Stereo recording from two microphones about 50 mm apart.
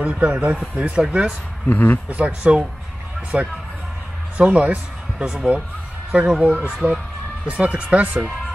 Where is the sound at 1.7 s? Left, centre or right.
Left.